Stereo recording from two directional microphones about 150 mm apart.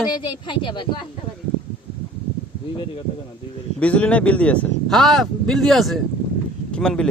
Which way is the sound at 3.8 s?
10° left (ahead or behind).